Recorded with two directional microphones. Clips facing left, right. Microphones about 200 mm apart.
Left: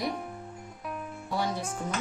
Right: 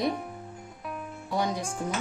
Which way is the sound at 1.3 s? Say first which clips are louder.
Right 2 dB; 15° right (ahead or behind).